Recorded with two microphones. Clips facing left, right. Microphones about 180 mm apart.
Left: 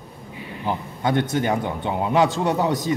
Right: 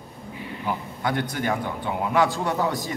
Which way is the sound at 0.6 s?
25° left (ahead or behind).